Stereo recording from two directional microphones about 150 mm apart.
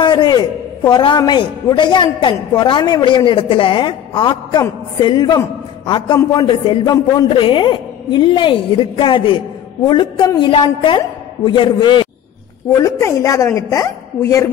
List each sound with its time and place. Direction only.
0.0 s a man's voice: 30° left (ahead or behind)
12.7 s a woman's voice: 20° left (ahead or behind)